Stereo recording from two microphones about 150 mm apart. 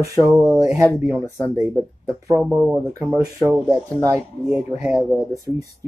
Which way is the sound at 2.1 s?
20° right (ahead or behind).